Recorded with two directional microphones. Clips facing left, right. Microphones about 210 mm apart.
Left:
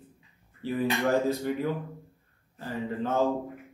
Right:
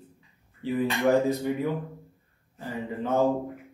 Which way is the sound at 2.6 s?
15° right (ahead or behind).